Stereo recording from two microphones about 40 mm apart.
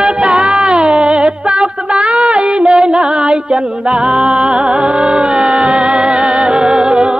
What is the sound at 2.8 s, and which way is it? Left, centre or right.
Music, right.